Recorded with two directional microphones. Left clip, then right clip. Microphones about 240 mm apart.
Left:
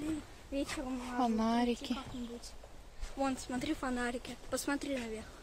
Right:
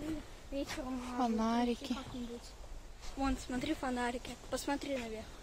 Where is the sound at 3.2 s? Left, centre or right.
Left.